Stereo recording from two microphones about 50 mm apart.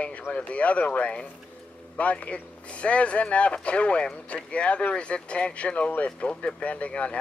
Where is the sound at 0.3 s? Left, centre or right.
Left.